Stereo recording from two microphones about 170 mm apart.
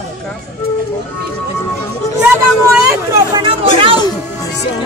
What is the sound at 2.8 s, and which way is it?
Speech, 15° right (ahead or behind).